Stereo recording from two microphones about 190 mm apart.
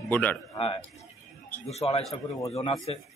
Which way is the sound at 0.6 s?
30° left (ahead or behind).